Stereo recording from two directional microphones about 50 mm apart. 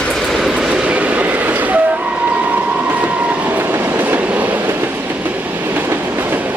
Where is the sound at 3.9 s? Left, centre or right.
Right.